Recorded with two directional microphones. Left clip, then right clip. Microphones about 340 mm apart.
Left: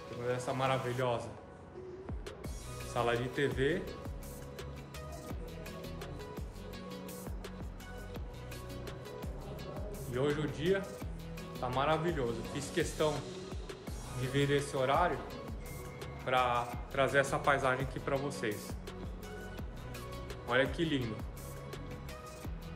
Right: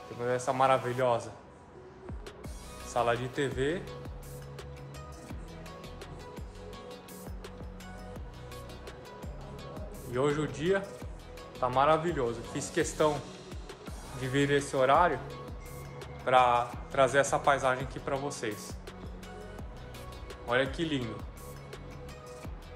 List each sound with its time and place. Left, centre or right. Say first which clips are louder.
0.3 s speech: right 7 dB; centre
2.9 s speech: right 4 dB; centre
10.1 s speech: right 4 dB; centre
14.3 s speech: right 4 dB; right
16.3 s speech: right 7 dB; centre
20.4 s speech: right 2 dB; centre